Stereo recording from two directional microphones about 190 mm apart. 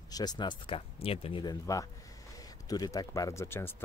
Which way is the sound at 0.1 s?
20° left (ahead or behind).